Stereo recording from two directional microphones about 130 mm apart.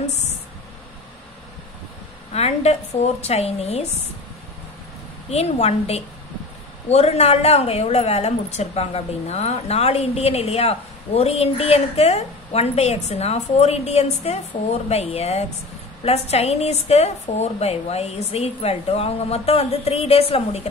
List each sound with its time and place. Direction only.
2.3 s a woman's voice: 55° left (ahead or behind)
5.3 s a woman's voice: 55° left (ahead or behind)